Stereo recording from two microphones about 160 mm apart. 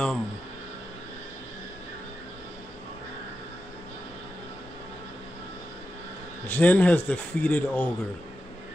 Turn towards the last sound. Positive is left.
turn(degrees=10)  # may be behind; listen again after turning